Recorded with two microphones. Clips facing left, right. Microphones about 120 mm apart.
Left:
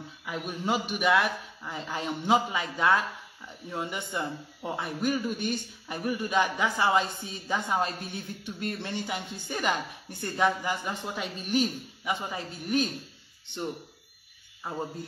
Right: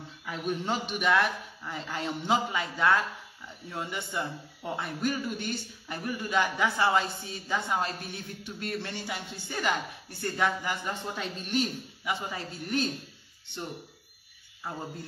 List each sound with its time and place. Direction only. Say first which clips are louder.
0.2 s a man's voice: right 2 dB; 10° left (ahead or behind)